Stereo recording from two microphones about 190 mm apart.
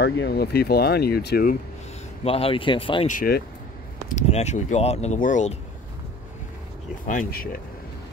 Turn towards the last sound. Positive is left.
turn(degrees=45)  # may be behind; listen again after turning